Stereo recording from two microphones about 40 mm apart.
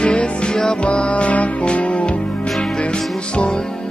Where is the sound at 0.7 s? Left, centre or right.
Left.